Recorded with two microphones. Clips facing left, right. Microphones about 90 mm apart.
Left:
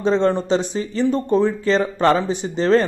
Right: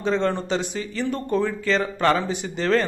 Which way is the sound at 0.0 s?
30° left (ahead or behind).